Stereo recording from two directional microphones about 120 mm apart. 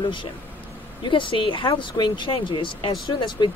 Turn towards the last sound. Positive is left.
turn(degrees=40)  # may be behind; listen again after turning